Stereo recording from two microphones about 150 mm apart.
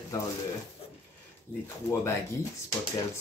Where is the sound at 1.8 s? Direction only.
20° left (ahead or behind).